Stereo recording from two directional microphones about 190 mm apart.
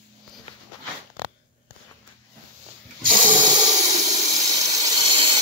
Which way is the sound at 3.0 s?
45° right (ahead or behind).